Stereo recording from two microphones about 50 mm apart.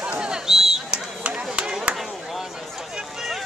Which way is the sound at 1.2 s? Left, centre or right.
Right.